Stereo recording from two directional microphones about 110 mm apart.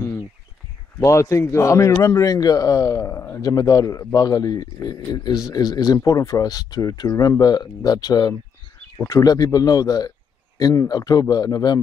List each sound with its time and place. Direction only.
0.9 s speech: 25° left (ahead or behind)